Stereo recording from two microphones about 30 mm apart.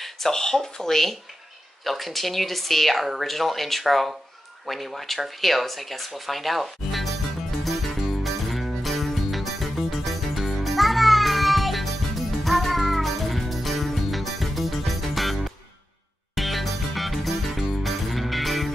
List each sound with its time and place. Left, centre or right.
0.3 s speech: centre
0.8 s speech: centre
5.4 s music: centre